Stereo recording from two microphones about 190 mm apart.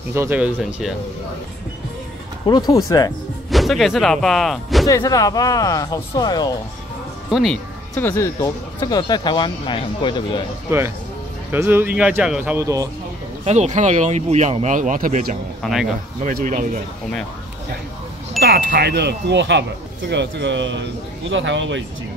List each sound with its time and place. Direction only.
0.1 s speech: 10° right (ahead or behind)
2.4 s speech: 20° left (ahead or behind)
3.4 s speech: centre (ahead or behind)
4.8 s speech: 15° left (ahead or behind)
7.2 s speech: centre (ahead or behind); by 10.4 s 25° left (ahead or behind)
10.7 s speech: 15° right (ahead or behind)
13.5 s speech: 40° right (ahead or behind)
15.6 s speech: centre (ahead or behind)
16.2 s speech: 45° right (ahead or behind)
18.4 s wind chime: 55° right (ahead or behind)
20.1 s speech: 65° right (ahead or behind)